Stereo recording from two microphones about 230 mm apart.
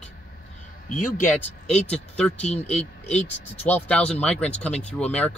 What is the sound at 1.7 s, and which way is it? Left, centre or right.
Speech, centre.